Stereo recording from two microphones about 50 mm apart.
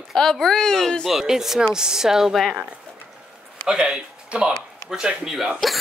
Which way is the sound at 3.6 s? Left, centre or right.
Centre.